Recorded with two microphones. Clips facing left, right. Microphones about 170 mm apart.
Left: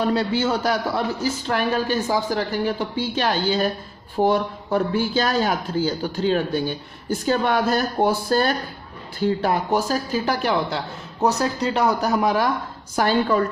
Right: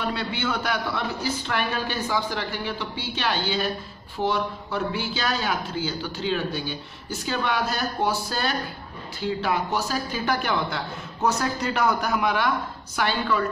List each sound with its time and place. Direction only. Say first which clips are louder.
0.0 s a man's voice: left 7 dB; 40° left (ahead or behind)
10.2 s a man's voice: left 3 dB; 35° left (ahead or behind)